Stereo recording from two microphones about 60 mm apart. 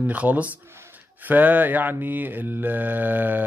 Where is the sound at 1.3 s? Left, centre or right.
Right.